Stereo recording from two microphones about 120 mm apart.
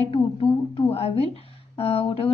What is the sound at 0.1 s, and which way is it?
A woman's voice, 50° left (ahead or behind).